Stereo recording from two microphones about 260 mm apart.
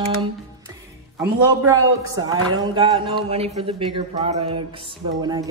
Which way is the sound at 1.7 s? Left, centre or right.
Centre.